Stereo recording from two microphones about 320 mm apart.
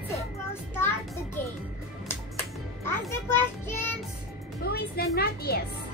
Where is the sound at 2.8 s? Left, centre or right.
Centre.